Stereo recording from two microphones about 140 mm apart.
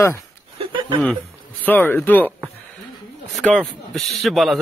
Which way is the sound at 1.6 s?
15° left (ahead or behind).